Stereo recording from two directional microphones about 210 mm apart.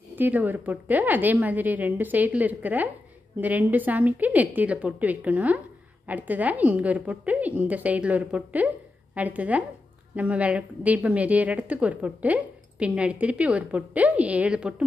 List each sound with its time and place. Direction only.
0.1 s a woman's voice: 10° right (ahead or behind)